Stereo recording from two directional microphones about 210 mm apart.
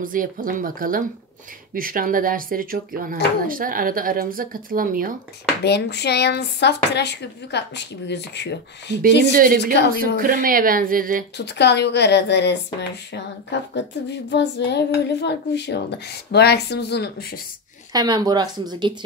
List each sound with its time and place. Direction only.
0.0 s speech: 40° right (ahead or behind)
5.6 s speech: 50° left (ahead or behind)
9.3 s speech: 40° right (ahead or behind)
11.3 s a woman's voice: 55° left (ahead or behind)
17.9 s speech: 20° right (ahead or behind)